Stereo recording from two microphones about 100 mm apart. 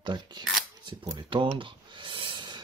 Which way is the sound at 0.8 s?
45° right (ahead or behind).